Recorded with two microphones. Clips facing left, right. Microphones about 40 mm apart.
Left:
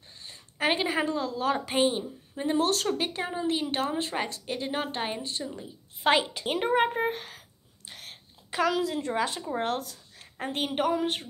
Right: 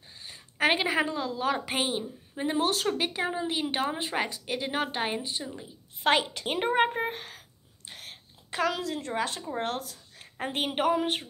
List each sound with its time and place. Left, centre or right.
0.2 s a sound: centre
0.8 s a woman's voice: centre
6.0 s a woman's voice: centre
6.4 s a woman's voice: centre